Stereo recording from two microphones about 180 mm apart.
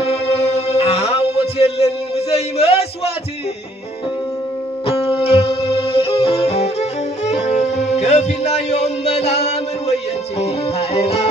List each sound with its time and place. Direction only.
0.0 s music: 35° left (ahead or behind)
4.8 s music: 30° left (ahead or behind)